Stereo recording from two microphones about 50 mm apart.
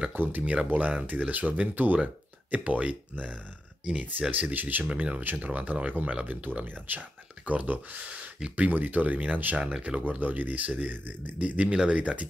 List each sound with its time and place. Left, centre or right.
0.1 s speech: right
0.4 s speech: centre
0.7 s speech: right
8.1 s speech: right
8.6 s speech: right
10.0 s speech: right